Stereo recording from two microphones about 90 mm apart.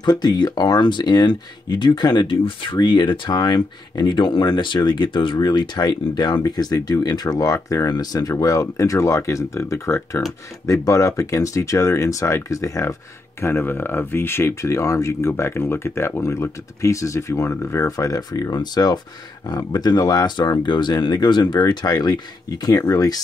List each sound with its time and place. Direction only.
0.0 s speech: 55° left (ahead or behind); by 12.9 s 35° left (ahead or behind)
13.4 s speech: 25° left (ahead or behind); by 23.1 s 40° left (ahead or behind)